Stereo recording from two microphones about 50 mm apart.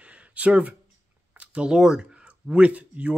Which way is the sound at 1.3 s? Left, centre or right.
Right.